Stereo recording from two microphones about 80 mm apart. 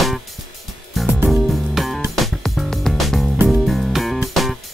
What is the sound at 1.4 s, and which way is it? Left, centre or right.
Music, centre.